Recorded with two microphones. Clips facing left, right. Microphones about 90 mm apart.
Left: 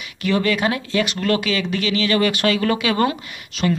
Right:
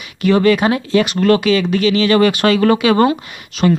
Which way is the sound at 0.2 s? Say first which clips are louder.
Right 7 dB; 35° right (ahead or behind).